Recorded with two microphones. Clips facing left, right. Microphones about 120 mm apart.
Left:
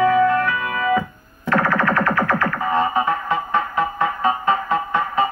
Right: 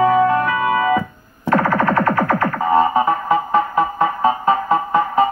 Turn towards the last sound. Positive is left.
turn(degrees=-45)  # may be behind; listen again after turning